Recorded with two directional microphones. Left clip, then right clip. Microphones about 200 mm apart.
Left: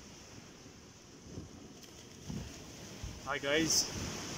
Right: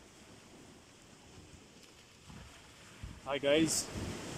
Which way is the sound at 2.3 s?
35° left (ahead or behind).